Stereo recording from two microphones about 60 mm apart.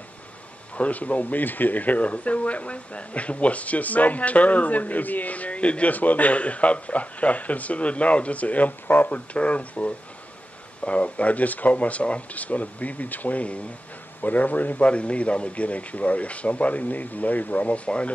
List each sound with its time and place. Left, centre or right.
0.7 s speech: left